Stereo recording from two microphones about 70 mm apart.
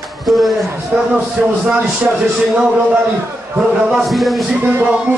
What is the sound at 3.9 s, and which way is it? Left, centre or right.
Speech, centre.